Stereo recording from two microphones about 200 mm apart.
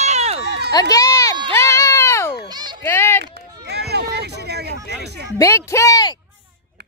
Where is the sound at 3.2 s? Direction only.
55° right (ahead or behind).